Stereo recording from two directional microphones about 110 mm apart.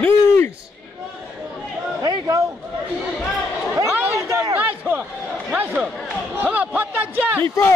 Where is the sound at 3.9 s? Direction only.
15° right (ahead or behind).